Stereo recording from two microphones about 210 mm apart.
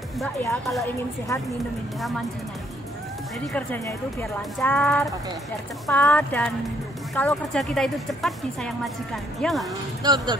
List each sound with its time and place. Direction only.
0.2 s a woman's voice: 5° left (ahead or behind)
3.5 s a woman's voice: 10° left (ahead or behind)
10.0 s speech: 20° right (ahead or behind)